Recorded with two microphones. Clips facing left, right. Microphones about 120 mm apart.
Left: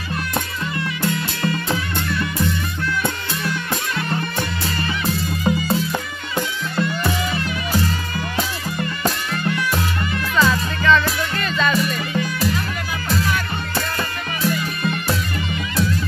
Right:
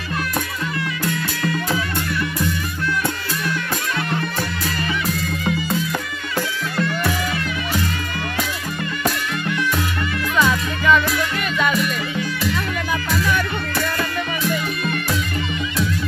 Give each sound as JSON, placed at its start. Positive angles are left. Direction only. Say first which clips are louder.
{"t": 1.0, "sound": "music", "louder": "left 2 dB", "side_deg": 25}
{"t": 10.3, "sound": "music", "louder": "left 1 dB", "side_deg": -10}